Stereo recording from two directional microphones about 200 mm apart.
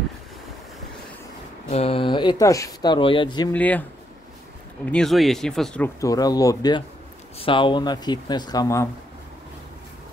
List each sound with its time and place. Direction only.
1.7 s speech: 30° left (ahead or behind)
3.5 s speech: 5° left (ahead or behind)
4.9 s speech: centre (ahead or behind)
5.9 s speech: 15° left (ahead or behind)